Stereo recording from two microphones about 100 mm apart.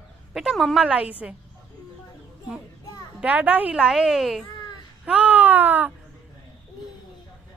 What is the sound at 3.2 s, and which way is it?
Speech, 15° right (ahead or behind).